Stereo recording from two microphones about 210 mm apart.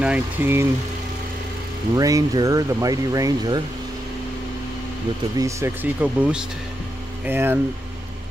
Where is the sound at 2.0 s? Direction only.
15° right (ahead or behind).